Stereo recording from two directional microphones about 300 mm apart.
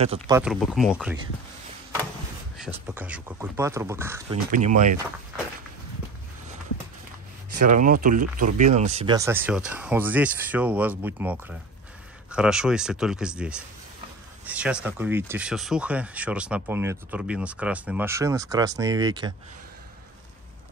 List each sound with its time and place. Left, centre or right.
0.0 s speech: centre
0.4 s speech: centre
2.5 s speech: centre
4.5 s speech: right
7.6 s speech: right